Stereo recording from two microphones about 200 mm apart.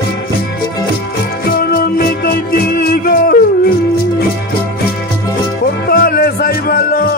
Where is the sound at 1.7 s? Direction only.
50° left (ahead or behind).